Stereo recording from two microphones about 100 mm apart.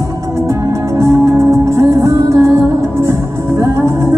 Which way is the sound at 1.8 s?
30° right (ahead or behind).